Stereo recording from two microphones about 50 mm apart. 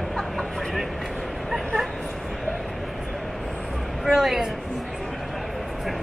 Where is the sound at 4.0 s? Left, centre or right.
Centre.